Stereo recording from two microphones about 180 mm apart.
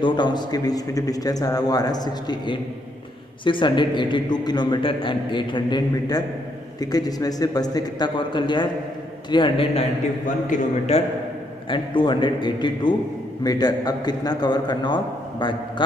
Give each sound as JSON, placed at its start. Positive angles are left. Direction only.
{"t": 0.0, "sound": "a man's voice", "side_deg": 25}
{"t": 10.2, "sound": "a man's voice", "side_deg": 45}
{"t": 11.7, "sound": "a man's voice", "side_deg": 25}